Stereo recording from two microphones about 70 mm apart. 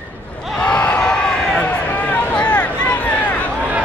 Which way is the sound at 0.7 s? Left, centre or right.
Centre.